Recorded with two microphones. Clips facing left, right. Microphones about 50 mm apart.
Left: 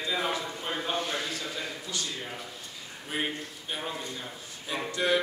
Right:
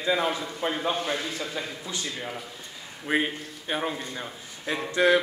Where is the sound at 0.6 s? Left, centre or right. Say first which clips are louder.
Right 10 dB; right.